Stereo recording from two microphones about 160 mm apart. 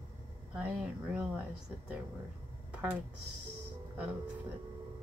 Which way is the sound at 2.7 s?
5° right (ahead or behind).